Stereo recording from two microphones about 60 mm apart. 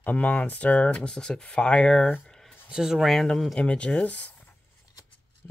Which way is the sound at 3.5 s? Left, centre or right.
Centre.